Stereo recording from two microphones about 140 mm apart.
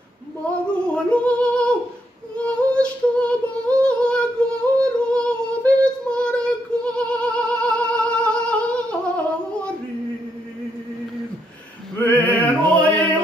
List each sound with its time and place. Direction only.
0.7 s female singing: 10° left (ahead or behind)
4.4 s child singing: 5° left (ahead or behind)
4.8 s female singing: 5° left (ahead or behind)
12.0 s opera: 15° left (ahead or behind)